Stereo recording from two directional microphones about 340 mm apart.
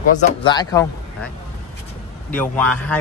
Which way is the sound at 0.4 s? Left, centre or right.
Centre.